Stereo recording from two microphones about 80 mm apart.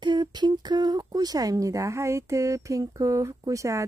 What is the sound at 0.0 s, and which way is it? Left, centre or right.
Speech, right.